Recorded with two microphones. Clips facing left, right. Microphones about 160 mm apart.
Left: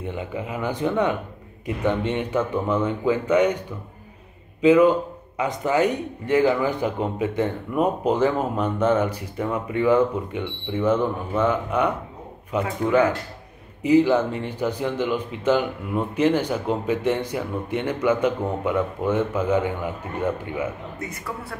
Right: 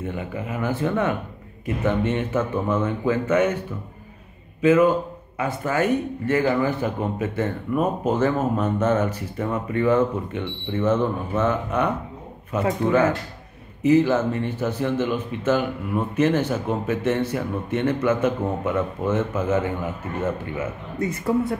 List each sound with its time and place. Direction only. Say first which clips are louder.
0.0 s speech: even; 15° left (ahead or behind)
13.8 s speech: even; 15° left (ahead or behind)
21.0 s speech: right 14 dB; 30° right (ahead or behind)